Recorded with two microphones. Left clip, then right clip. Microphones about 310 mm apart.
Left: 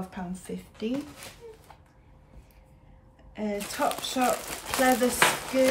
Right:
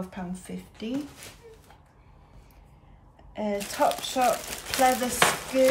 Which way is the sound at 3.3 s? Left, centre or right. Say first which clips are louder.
Right 2 dB; centre.